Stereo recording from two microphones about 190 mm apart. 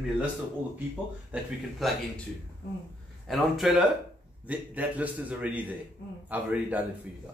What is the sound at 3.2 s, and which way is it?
Speech, centre (ahead or behind).